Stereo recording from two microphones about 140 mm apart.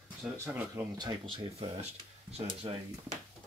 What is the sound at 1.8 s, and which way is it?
Speech, 45° right (ahead or behind).